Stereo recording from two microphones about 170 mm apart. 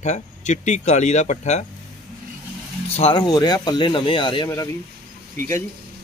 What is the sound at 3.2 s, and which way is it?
Speech, 25° left (ahead or behind).